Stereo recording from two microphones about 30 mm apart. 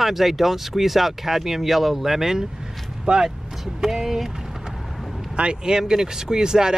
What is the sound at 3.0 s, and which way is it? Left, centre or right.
Speech, right.